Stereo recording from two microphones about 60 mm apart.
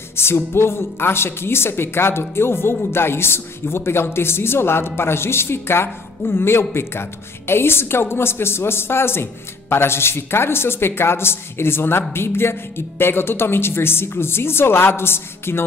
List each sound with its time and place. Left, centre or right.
0.1 s a woman's voice: left